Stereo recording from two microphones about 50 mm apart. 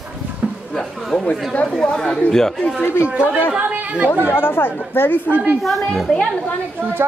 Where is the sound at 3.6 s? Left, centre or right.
Right.